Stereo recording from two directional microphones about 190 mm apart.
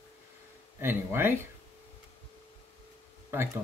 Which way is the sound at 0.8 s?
10° right (ahead or behind).